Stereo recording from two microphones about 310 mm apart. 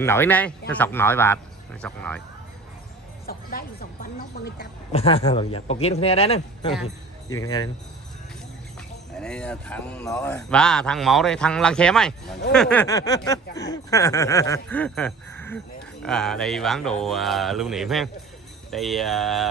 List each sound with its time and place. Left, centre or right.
0.0 s snicker: centre
3.3 s speech: left
4.9 s a man's voice: centre
7.2 s a sound: centre
9.1 s snicker: centre
12.5 s a sound: centre
13.6 s snicker: centre